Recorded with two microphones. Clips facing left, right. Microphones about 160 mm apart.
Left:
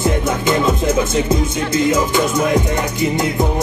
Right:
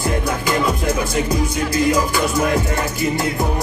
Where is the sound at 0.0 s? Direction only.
25° left (ahead or behind).